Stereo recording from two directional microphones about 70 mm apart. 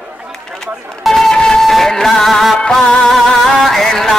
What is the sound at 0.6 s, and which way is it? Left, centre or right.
Speech, centre.